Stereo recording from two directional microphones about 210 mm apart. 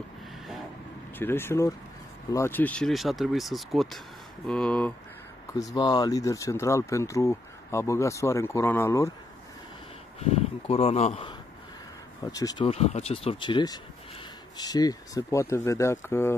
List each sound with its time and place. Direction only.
1.1 s speech: 10° left (ahead or behind)
5.5 s speech: 15° left (ahead or behind)
10.3 s speech: 30° left (ahead or behind)
12.2 s speech: 15° left (ahead or behind)